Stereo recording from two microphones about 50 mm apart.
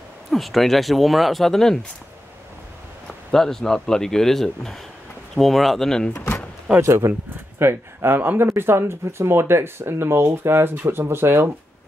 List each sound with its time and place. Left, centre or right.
0.3 s speech: centre
3.1 s a man's voice: centre
6.1 s speech: left
6.8 s speech: right